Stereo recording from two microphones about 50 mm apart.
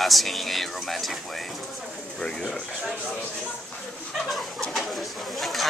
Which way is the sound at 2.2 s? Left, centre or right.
Centre.